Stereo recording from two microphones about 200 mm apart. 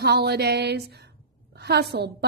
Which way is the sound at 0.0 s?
55° right (ahead or behind).